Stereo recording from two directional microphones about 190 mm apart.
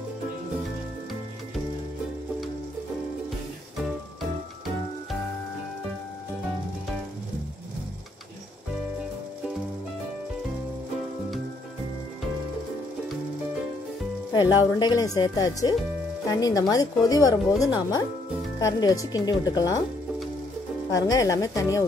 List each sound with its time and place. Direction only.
14.3 s a woman's voice: 20° left (ahead or behind)
20.9 s speech: 20° left (ahead or behind)